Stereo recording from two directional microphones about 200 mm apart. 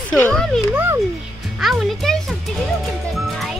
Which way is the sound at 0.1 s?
5° left (ahead or behind).